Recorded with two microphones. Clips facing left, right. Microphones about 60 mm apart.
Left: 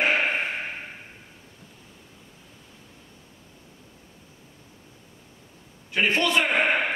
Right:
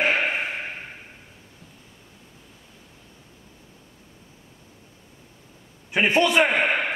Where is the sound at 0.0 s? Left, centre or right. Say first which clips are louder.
Even; centre.